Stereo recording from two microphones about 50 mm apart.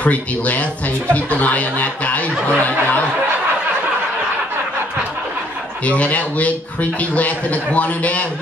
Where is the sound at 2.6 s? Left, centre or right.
Left.